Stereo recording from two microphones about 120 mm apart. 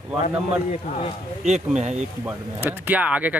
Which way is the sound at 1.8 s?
75° right (ahead or behind).